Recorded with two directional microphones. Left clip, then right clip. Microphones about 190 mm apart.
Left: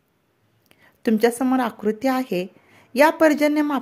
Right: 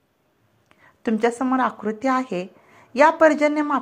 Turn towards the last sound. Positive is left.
turn(degrees=40)  # may be behind; listen again after turning